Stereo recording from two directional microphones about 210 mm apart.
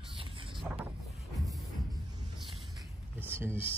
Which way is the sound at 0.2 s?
25° right (ahead or behind).